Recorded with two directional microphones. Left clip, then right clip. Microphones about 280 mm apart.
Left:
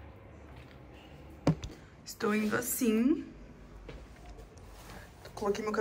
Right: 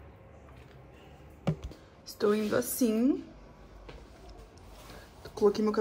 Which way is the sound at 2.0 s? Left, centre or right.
Right.